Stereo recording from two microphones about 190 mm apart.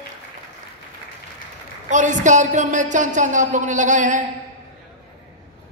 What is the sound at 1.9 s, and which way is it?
A man's voice, 40° right (ahead or behind).